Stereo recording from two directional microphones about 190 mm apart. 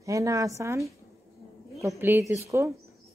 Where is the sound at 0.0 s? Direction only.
15° right (ahead or behind).